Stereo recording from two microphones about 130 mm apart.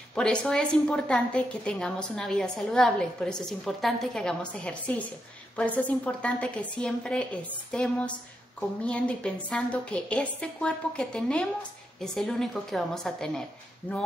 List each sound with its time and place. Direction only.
0.1 s a woman's voice: 5° left (ahead or behind)